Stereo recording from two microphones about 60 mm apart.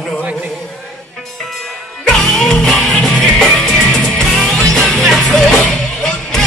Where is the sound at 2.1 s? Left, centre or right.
Centre.